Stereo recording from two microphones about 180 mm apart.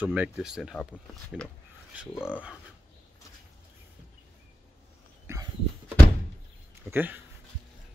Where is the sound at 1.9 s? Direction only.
10° right (ahead or behind).